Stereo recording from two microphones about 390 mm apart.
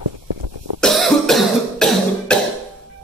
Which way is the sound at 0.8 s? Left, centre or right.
Centre.